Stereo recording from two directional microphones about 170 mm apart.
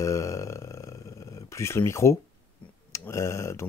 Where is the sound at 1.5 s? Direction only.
15° left (ahead or behind).